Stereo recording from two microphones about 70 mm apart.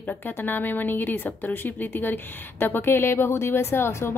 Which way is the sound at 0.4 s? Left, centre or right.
Left.